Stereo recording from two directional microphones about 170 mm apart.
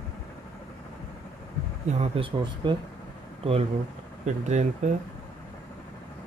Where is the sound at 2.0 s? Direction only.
35° right (ahead or behind).